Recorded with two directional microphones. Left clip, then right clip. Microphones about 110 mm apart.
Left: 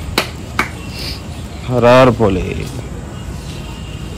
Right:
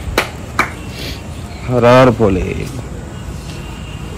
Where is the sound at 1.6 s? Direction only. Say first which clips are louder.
Even; 50° right (ahead or behind).